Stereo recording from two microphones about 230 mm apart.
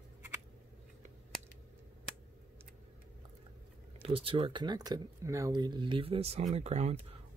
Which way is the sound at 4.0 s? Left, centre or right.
Right.